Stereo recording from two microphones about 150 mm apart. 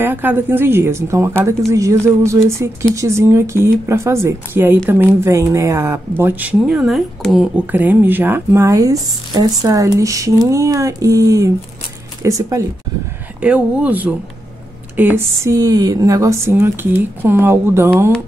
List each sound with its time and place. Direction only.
0.0 s speech: 15° right (ahead or behind)
13.4 s speech: 10° right (ahead or behind)